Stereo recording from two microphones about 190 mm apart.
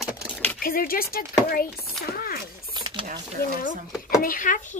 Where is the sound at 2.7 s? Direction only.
20° right (ahead or behind).